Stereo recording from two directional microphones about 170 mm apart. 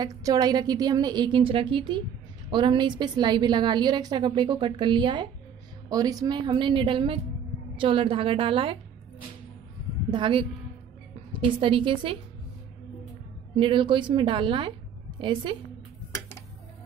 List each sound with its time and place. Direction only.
0.0 s a woman's voice: 20° right (ahead or behind)
10.1 s a woman's voice: 30° right (ahead or behind)
11.4 s a woman's voice: 30° right (ahead or behind)
13.6 s a woman's voice: 30° right (ahead or behind)
16.1 s a sound: 15° left (ahead or behind)